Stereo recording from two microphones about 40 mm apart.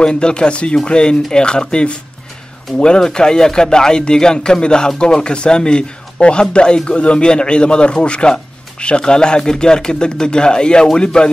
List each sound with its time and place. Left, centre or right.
0.0 s speech: left